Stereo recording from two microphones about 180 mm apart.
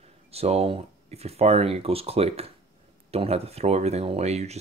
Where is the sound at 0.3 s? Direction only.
35° right (ahead or behind).